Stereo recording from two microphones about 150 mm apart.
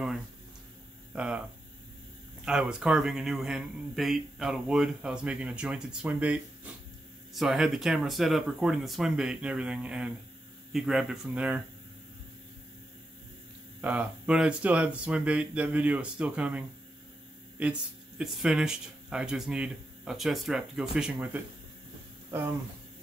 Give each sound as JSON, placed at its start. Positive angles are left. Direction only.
{"t": 1.1, "sound": "hum", "side_deg": -5}
{"t": 2.4, "sound": "speech", "side_deg": -5}
{"t": 13.7, "sound": "speech", "side_deg": -10}